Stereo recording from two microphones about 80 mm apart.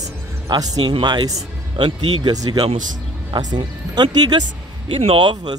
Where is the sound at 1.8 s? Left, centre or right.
Right.